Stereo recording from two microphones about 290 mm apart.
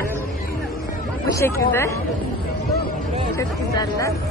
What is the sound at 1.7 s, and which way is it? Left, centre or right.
Speech, centre.